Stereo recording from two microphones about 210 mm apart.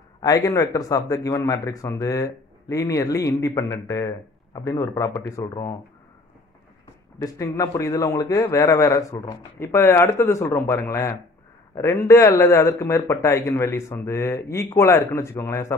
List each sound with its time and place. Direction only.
0.2 s speech: 15° left (ahead or behind)
7.2 s speech: 15° left (ahead or behind)